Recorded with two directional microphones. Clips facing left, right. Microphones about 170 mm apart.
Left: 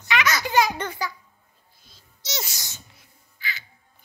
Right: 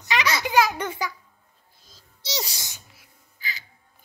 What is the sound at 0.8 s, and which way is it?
Speech, 15° right (ahead or behind).